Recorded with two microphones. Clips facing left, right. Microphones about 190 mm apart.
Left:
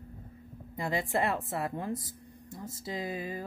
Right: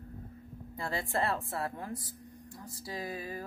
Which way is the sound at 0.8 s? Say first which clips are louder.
Left 3 dB; 15° left (ahead or behind).